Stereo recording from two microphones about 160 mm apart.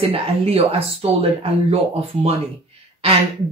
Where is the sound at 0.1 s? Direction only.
35° right (ahead or behind).